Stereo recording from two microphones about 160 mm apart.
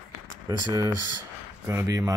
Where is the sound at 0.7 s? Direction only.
25° right (ahead or behind).